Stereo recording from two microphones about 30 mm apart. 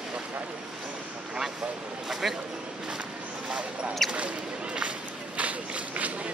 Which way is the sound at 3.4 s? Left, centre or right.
Right.